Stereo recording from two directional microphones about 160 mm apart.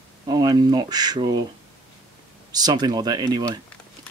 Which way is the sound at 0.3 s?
25° right (ahead or behind).